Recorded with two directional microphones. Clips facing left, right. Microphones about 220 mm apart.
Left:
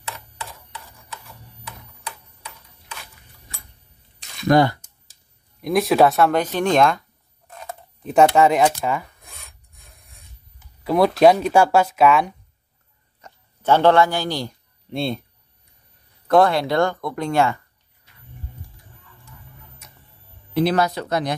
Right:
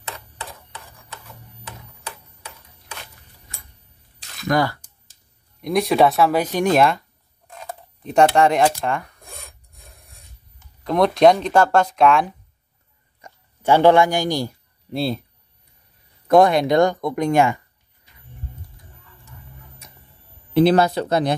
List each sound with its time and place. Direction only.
4.5 s speech: 25° left (ahead or behind)
5.6 s speech: centre (ahead or behind)
10.8 s a sound: 5° left (ahead or behind)
11.1 s speech: 5° left (ahead or behind)
13.2 s a man's voice: 10° right (ahead or behind)
16.3 s speech: 15° right (ahead or behind)
20.5 s speech: 30° right (ahead or behind)